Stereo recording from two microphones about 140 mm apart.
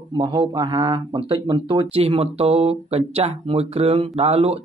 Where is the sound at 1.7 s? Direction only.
45° right (ahead or behind).